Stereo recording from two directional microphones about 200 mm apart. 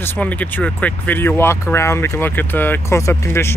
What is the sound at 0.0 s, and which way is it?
Speech, 10° left (ahead or behind).